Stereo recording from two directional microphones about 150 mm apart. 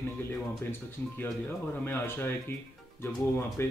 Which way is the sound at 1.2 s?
15° left (ahead or behind).